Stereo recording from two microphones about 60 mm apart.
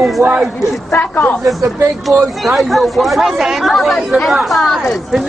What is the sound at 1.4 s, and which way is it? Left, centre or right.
Speech, right.